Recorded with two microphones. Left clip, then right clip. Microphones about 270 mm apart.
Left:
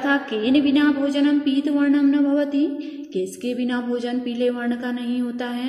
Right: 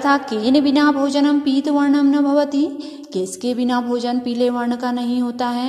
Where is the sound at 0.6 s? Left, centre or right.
Right.